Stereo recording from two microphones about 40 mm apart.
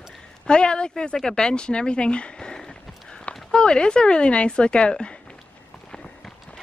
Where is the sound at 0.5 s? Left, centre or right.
Left.